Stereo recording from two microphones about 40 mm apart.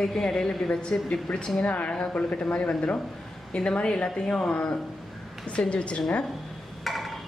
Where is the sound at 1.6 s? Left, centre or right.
Left.